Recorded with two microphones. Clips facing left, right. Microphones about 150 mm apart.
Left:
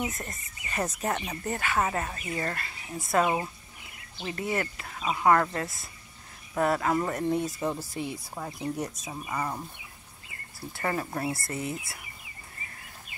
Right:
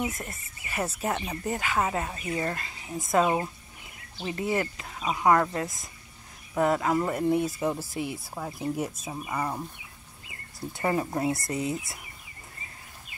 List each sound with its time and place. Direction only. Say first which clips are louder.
0.0 s speech: right 1 dB; 10° right (ahead or behind)
4.3 s speech: right 2 dB; 20° right (ahead or behind)
10.8 s speech: right 4 dB; 15° right (ahead or behind)